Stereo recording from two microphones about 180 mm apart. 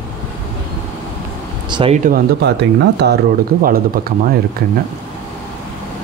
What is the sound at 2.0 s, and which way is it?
Speech, 60° right (ahead or behind).